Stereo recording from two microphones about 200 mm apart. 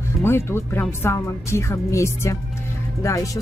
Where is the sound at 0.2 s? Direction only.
10° left (ahead or behind).